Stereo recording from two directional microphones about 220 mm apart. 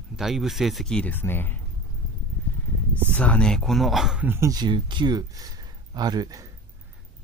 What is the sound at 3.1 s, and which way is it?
Speech, 5° left (ahead or behind).